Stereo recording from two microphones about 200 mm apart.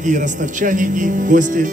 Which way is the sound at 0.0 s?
40° right (ahead or behind).